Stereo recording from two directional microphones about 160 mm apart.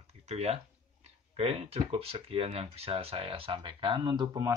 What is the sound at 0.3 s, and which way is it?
Speech, 40° right (ahead or behind).